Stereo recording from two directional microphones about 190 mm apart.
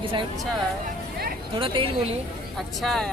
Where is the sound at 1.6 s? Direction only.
25° right (ahead or behind).